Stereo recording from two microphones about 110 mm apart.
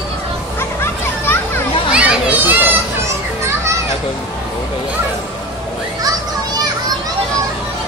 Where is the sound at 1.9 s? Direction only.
15° right (ahead or behind).